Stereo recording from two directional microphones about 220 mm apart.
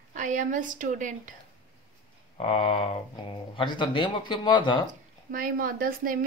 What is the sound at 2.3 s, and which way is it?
Speech, 25° left (ahead or behind).